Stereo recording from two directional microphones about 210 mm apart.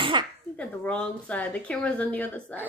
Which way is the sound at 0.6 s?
5° left (ahead or behind).